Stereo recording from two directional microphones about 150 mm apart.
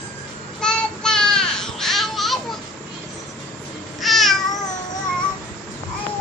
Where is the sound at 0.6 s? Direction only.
5° left (ahead or behind).